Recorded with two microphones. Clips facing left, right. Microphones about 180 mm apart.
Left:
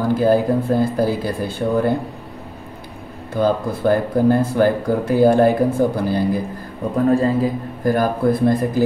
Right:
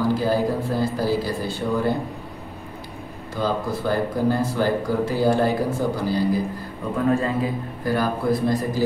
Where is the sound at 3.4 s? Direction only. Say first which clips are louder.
Left 6 dB; 55° left (ahead or behind).